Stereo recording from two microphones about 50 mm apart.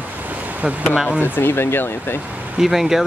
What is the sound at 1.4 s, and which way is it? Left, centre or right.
Speech, left.